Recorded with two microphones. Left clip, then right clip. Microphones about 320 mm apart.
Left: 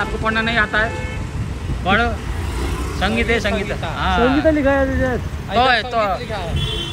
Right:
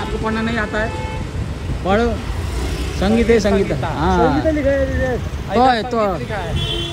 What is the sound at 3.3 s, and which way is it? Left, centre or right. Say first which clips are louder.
Speech: right 4 dB; centre.